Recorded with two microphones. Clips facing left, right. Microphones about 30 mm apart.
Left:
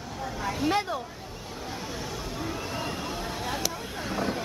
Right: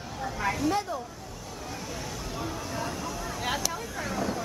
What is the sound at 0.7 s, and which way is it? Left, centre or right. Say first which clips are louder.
Speech: left 2 dB; left.